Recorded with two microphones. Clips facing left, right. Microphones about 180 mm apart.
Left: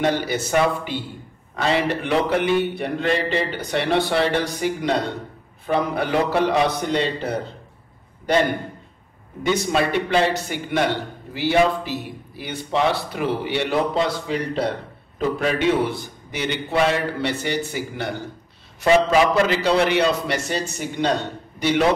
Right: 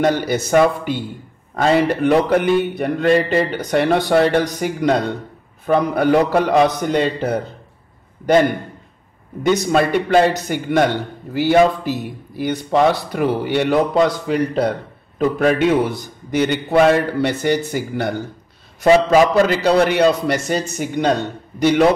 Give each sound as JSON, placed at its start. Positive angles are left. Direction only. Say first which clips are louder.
{"t": 0.0, "sound": "a man's voice", "louder": "right 4 dB", "side_deg": -45}
{"t": 9.4, "sound": "a man's voice", "louder": "right 5 dB", "side_deg": -40}